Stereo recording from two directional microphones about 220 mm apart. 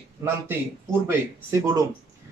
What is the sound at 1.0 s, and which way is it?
Speech, 15° right (ahead or behind).